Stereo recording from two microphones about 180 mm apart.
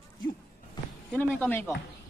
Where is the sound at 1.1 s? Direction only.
10° left (ahead or behind).